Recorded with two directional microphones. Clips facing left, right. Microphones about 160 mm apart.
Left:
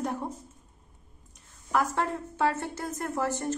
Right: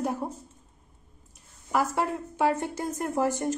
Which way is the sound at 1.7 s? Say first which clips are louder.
Right 1 dB; 10° right (ahead or behind).